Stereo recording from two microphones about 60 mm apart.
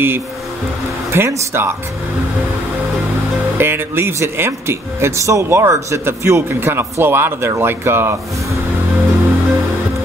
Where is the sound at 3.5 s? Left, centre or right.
Right.